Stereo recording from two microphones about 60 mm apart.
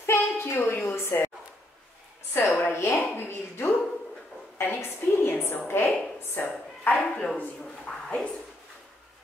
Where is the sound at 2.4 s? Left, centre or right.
Left.